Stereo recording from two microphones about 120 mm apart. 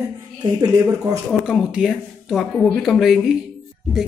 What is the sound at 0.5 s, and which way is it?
Speech, 30° right (ahead or behind).